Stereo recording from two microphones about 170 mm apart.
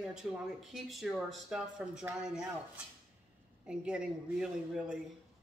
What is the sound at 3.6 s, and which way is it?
A woman's voice, 5° right (ahead or behind).